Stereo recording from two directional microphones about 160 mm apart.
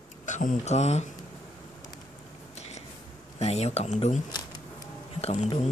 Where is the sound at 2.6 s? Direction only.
45° left (ahead or behind).